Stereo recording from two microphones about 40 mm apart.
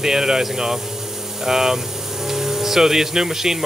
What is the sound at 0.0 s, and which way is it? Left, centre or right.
Speech, centre.